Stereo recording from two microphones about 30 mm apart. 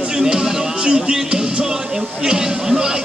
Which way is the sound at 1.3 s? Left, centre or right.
Right.